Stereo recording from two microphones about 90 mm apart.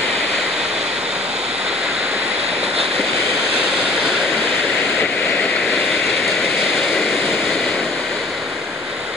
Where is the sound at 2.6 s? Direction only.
5° right (ahead or behind).